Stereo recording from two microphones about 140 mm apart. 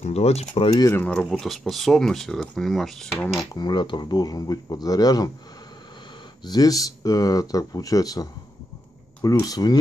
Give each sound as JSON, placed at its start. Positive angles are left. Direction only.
{"t": 0.0, "sound": "speech", "side_deg": 50}
{"t": 0.7, "sound": "speech", "side_deg": 25}
{"t": 1.0, "sound": "speech", "side_deg": 5}
{"t": 3.5, "sound": "speech", "side_deg": 30}
{"t": 6.4, "sound": "speech", "side_deg": 30}